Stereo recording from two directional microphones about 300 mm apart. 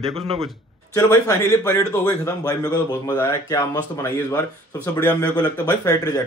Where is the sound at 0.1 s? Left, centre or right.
Centre.